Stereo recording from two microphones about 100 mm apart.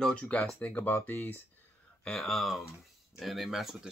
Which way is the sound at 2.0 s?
5° left (ahead or behind).